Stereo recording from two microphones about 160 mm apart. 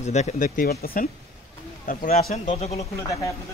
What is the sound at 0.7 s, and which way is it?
Speech, 70° left (ahead or behind).